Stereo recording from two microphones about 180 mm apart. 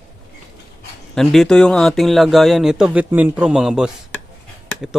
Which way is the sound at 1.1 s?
Centre (ahead or behind).